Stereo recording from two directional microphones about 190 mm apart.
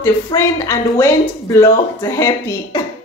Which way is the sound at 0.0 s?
15° left (ahead or behind).